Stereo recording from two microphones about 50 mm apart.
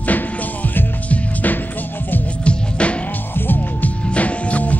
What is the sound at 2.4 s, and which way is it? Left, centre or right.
Music, left.